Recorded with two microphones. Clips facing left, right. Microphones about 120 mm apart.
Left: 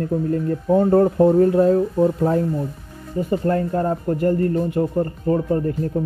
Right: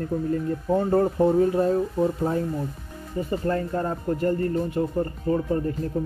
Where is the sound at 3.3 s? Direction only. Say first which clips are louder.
Left 5 dB; 45° left (ahead or behind).